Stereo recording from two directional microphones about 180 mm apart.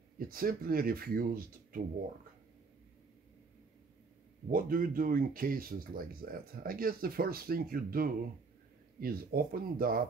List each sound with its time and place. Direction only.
0.3 s speech: 55° right (ahead or behind)
4.5 s speech: 50° right (ahead or behind)